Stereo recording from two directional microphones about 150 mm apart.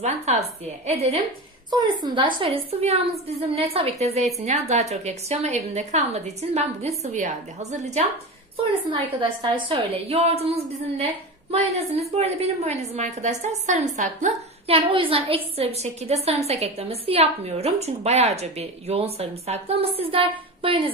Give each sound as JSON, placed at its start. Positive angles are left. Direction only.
{"t": 0.0, "sound": "a woman's voice", "side_deg": -45}
{"t": 2.0, "sound": "a woman's voice", "side_deg": -35}
{"t": 8.5, "sound": "a woman's voice", "side_deg": -35}
{"t": 14.8, "sound": "a woman's voice", "side_deg": -35}